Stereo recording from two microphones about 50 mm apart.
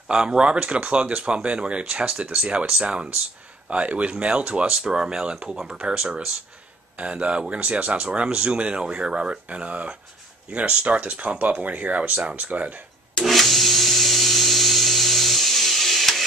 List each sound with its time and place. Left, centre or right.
0.1 s speech: centre; by 12.8 s right
13.2 s wood: centre